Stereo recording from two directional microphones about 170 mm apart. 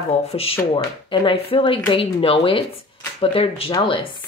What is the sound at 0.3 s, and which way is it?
Speech, 35° left (ahead or behind).